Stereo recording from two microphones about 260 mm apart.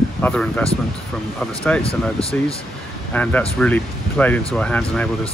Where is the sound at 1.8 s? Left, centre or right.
Left.